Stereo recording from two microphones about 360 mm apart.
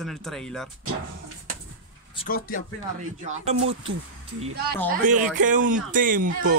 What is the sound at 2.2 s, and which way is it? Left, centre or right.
Speech, left.